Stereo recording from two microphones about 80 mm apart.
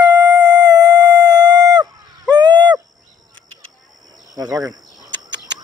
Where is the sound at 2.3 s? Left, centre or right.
Right.